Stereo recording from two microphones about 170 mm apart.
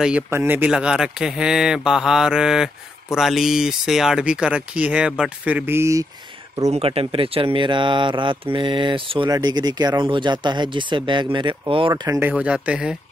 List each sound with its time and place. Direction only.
0.3 s speech: 15° right (ahead or behind)
6.7 s speech: 35° right (ahead or behind); by 12.9 s 5° right (ahead or behind)